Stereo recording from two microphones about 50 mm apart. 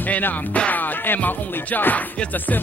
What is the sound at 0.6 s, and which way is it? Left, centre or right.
Music, left.